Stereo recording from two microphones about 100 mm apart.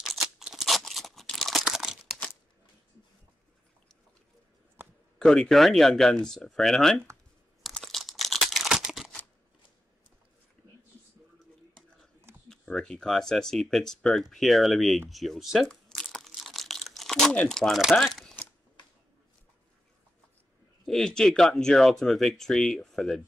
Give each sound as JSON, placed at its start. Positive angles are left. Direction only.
{"t": 0.0, "sound": "scissors", "side_deg": -5}
{"t": 1.3, "sound": "crumpling", "side_deg": 0}
{"t": 4.8, "sound": "a sound", "side_deg": -20}
{"t": 5.2, "sound": "speech", "side_deg": 5}
{"t": 7.6, "sound": "crumpling", "side_deg": 0}
{"t": 12.4, "sound": "speech", "side_deg": 10}
{"t": 16.3, "sound": "crunch", "side_deg": 0}
{"t": 17.3, "sound": "speech", "side_deg": 10}
{"t": 20.8, "sound": "speech", "side_deg": 5}